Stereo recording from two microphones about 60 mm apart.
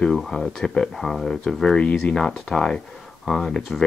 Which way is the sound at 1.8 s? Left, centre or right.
Centre.